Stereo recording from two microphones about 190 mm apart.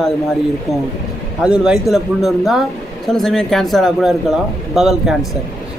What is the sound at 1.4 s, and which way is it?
Speech, 5° right (ahead or behind).